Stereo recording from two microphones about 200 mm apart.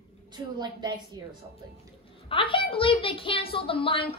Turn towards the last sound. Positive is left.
turn(degrees=25)  # may be behind; listen again after turning